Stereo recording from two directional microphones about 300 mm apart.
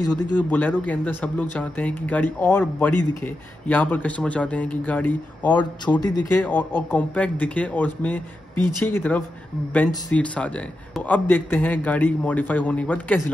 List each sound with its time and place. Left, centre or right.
0.0 s speech: left
0.4 s speech: centre